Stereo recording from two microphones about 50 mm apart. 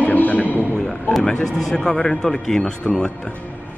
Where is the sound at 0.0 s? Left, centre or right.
Left.